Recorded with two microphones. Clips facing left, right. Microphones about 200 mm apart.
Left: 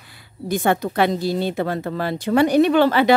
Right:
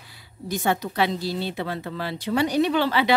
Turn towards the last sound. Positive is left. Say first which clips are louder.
# left 6 dB
turn(degrees=50)  # may be behind; listen again after turning